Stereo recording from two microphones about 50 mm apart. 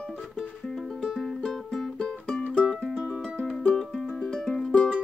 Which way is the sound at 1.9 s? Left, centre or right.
Centre.